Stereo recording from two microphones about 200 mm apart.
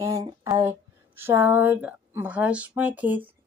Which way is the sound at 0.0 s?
15° right (ahead or behind).